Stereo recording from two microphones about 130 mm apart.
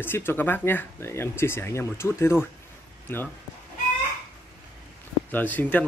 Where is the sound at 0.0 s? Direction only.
15° left (ahead or behind).